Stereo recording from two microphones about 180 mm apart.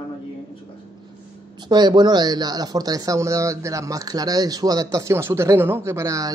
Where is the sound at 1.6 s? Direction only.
25° right (ahead or behind).